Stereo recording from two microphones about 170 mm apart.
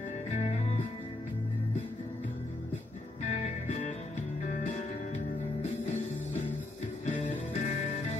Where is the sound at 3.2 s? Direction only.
45° left (ahead or behind).